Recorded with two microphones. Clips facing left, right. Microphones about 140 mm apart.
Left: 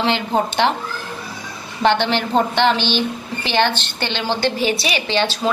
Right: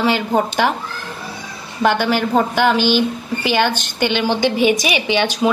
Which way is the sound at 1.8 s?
10° right (ahead or behind).